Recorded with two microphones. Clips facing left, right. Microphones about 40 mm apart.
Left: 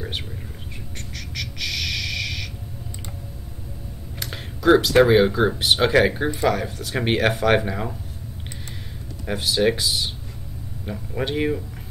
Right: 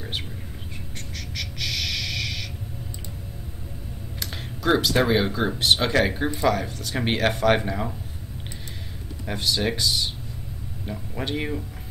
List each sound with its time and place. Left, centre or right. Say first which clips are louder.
0.9 s bird: left 2 dB; centre
4.2 s a sound: left 3 dB; centre
5.0 s speech: left 6 dB; centre
9.2 s speech: left 5 dB; centre